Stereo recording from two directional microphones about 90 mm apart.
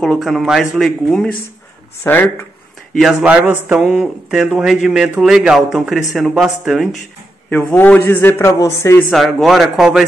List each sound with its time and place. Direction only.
0.0 s speech: 5° left (ahead or behind)
2.0 s a man's voice: 20° left (ahead or behind)
3.0 s speech: 5° right (ahead or behind)
3.3 s a sound: 15° right (ahead or behind)
4.6 s speech: 5° right (ahead or behind)
7.4 s a man's voice: 20° left (ahead or behind)
8.5 s a man's voice: 35° left (ahead or behind)
9.1 s speech: centre (ahead or behind)